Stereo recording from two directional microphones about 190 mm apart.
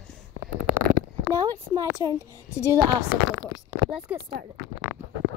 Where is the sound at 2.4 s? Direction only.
15° left (ahead or behind).